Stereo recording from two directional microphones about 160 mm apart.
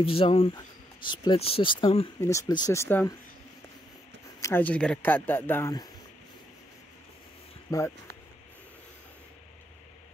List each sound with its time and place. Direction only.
0.0 s speech: 35° left (ahead or behind)
2.2 s speech: 20° left (ahead or behind)
4.4 s speech: 15° left (ahead or behind)
7.7 s speech: 20° left (ahead or behind)